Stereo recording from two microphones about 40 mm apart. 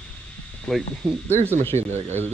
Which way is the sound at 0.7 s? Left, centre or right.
Centre.